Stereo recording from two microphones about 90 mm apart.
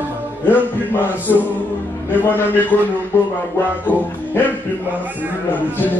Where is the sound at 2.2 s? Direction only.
25° left (ahead or behind).